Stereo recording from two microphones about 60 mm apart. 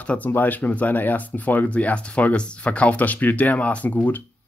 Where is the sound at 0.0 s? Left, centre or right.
Left.